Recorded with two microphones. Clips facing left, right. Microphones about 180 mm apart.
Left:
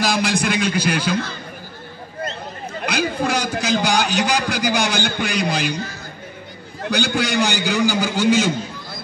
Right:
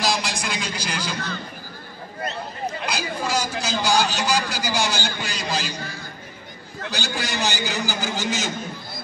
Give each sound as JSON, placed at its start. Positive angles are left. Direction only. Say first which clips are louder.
{"t": 0.0, "sound": "speech", "louder": "left 5 dB", "side_deg": 55}
{"t": 2.8, "sound": "a man's voice", "louder": "left 9 dB", "side_deg": 55}